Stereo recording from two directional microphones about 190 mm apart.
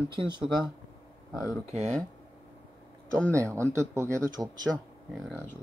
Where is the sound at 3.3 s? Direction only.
15° right (ahead or behind).